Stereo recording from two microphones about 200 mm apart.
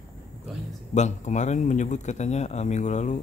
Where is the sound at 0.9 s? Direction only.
35° left (ahead or behind).